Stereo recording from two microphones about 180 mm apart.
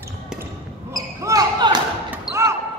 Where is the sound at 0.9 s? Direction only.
20° right (ahead or behind).